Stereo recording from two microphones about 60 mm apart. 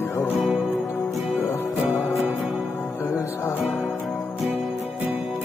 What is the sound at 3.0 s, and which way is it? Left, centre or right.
Music, left.